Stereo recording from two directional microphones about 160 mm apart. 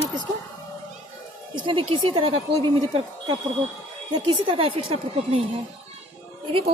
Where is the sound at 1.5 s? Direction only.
30° right (ahead or behind).